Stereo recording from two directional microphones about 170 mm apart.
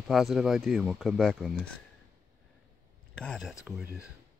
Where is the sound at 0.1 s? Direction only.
Centre (ahead or behind).